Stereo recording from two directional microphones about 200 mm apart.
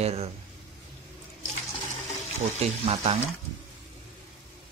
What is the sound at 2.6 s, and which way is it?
Speech, 30° right (ahead or behind).